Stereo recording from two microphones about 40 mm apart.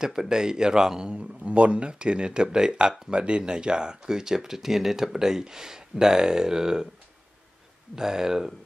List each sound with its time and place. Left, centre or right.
0.0 s speech: centre
7.9 s speech: centre